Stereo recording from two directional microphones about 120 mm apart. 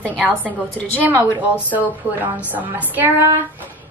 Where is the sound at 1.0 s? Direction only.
15° right (ahead or behind).